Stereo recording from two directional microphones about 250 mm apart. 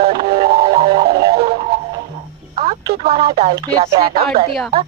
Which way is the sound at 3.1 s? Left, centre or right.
Right.